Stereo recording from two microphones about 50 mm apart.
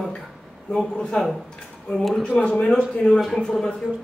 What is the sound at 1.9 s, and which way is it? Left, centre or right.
Speech, centre.